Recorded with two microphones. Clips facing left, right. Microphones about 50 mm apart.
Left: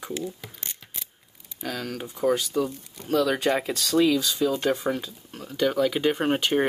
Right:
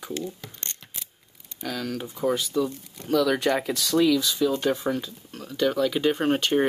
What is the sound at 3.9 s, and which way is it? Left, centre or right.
Speech, centre.